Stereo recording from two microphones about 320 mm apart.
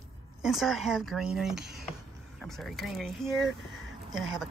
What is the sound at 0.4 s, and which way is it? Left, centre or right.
Speech, centre.